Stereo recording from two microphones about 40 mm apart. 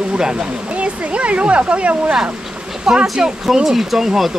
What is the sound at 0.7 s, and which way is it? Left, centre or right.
Speech, right.